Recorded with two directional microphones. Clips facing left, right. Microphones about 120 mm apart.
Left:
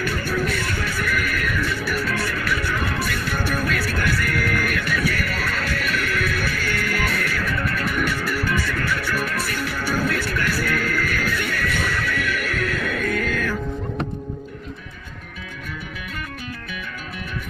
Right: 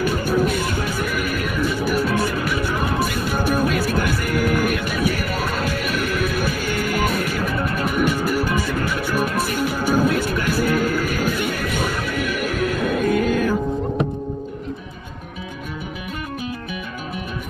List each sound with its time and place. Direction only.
0.0 s music: 15° right (ahead or behind)